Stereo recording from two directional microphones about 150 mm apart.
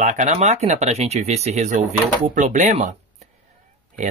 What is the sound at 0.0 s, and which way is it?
Speech, 55° right (ahead or behind).